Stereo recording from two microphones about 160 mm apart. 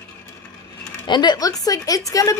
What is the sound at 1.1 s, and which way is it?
A woman's voice, 25° left (ahead or behind).